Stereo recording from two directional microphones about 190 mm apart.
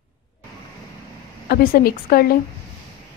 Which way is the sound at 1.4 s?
50° left (ahead or behind).